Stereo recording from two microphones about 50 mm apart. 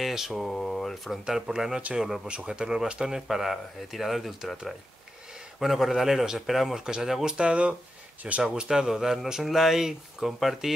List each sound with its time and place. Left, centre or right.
0.0 s mantra: centre
0.3 s speech: centre
1.2 s speech: centre
2.2 s speech: centre
7.3 s speech: right
8.6 s speech: centre